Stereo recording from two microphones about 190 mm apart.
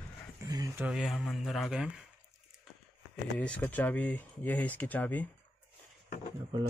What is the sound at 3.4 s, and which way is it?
Speech, 5° left (ahead or behind).